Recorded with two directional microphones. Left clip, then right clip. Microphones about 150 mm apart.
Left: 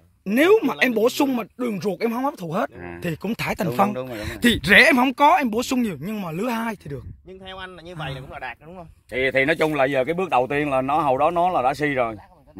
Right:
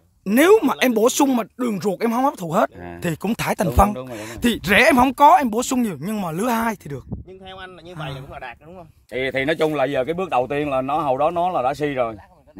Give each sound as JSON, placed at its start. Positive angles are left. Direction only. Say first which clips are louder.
{"t": 0.2, "sound": "speech", "louder": "right 3 dB", "side_deg": -35}
{"t": 3.4, "sound": "speech", "louder": "right 4 dB", "side_deg": -25}
{"t": 4.2, "sound": "speech", "louder": "left 3 dB", "side_deg": -5}
{"t": 5.9, "sound": "speech", "louder": "right 3 dB", "side_deg": -30}
{"t": 8.0, "sound": "speech", "louder": "even", "side_deg": 0}
{"t": 9.1, "sound": "speech", "louder": "left 2 dB", "side_deg": -90}